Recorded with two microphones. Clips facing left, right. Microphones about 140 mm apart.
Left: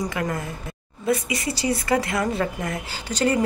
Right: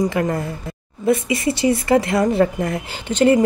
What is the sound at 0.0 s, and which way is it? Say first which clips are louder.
Speech: right 7 dB; 25° right (ahead or behind).